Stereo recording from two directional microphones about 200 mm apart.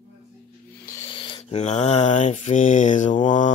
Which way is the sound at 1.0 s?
25° left (ahead or behind).